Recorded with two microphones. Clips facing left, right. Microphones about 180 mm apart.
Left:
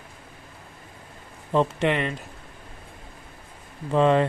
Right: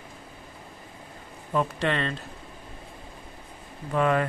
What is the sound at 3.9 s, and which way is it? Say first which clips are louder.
Speech: left 4 dB; 25° left (ahead or behind).